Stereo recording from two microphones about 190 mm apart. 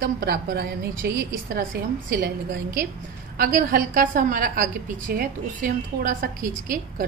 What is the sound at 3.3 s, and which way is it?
A woman's voice, 45° right (ahead or behind).